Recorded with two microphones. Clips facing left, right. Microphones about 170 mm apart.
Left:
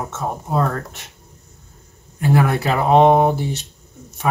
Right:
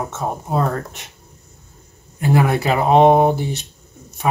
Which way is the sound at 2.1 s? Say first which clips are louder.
Even; 15° right (ahead or behind).